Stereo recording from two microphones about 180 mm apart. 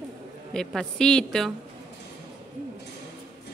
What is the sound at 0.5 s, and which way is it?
A woman's voice, 5° left (ahead or behind).